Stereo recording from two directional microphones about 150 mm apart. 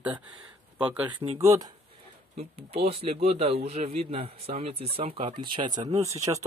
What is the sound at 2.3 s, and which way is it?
A man's voice, 40° right (ahead or behind).